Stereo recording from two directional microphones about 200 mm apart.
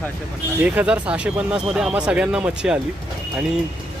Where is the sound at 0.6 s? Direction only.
5° right (ahead or behind).